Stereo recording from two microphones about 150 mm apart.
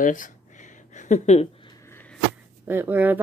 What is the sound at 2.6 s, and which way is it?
Speech, 15° right (ahead or behind).